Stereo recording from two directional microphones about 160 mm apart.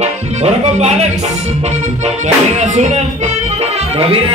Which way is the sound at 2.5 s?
45° right (ahead or behind).